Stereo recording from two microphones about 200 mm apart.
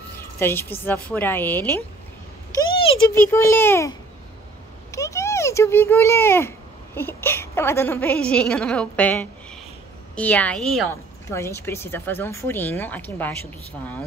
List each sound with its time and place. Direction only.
0.4 s speech: 10° left (ahead or behind)
2.5 s a sound: 15° left (ahead or behind)
3.1 s speech: 10° left (ahead or behind)
4.9 s a child's voice: 15° left (ahead or behind)
10.9 s speech: 15° left (ahead or behind)